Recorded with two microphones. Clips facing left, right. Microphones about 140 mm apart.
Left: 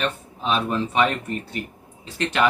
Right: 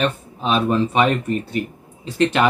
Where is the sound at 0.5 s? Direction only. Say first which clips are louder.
Right 5 dB; 20° right (ahead or behind).